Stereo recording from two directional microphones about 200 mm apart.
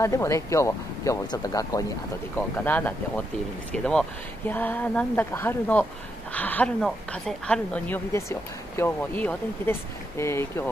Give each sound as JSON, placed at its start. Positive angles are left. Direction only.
{"t": 0.0, "sound": "a woman's voice", "side_deg": 15}